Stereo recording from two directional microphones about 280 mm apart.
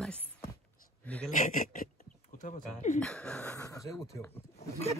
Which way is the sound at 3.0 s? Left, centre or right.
Centre.